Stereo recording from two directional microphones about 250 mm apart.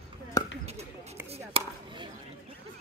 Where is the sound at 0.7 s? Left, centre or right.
Right.